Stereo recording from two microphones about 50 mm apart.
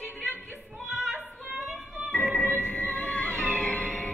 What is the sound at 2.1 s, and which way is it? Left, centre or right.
Music, left.